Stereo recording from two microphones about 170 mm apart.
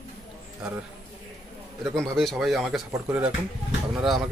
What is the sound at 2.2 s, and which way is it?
Speech, centre (ahead or behind).